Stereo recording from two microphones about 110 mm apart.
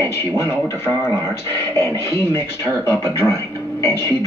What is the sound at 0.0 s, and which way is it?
Speech, 25° left (ahead or behind).